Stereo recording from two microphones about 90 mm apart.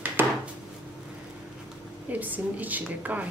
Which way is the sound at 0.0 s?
20° right (ahead or behind).